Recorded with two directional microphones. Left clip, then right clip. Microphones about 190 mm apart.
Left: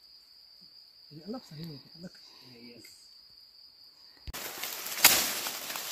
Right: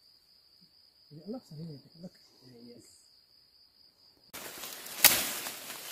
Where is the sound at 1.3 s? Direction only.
10° right (ahead or behind).